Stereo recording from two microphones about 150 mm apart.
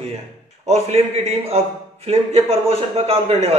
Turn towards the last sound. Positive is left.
turn(degrees=-45)  # may be behind; listen again after turning